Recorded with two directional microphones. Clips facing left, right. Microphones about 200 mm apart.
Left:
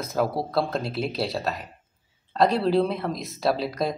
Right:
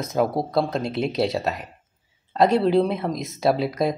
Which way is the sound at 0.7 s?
Centre (ahead or behind).